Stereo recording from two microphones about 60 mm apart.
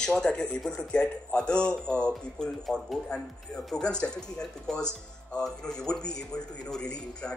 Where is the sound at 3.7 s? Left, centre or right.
Centre.